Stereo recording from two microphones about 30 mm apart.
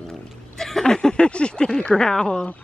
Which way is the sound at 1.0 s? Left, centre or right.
Left.